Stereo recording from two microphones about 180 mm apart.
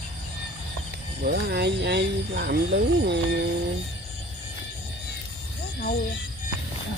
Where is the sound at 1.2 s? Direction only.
55° right (ahead or behind).